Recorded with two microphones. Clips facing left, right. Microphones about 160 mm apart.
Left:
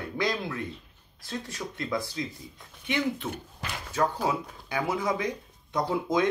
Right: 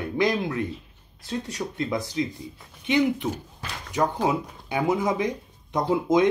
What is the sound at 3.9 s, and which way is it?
Speech, 15° right (ahead or behind).